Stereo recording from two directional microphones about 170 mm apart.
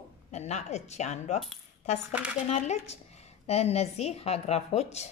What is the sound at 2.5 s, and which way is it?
A woman's voice, 45° left (ahead or behind).